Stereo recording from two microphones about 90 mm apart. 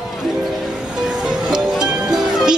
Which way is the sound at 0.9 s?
5° right (ahead or behind).